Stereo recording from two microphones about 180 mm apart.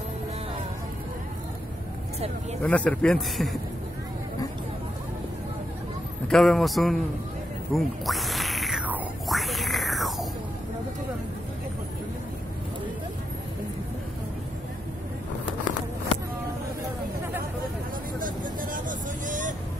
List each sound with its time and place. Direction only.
2.6 s a man's voice: 10° left (ahead or behind)
6.2 s a man's voice: centre (ahead or behind)
7.7 s music: centre (ahead or behind)
18.2 s vehicle: 50° right (ahead or behind)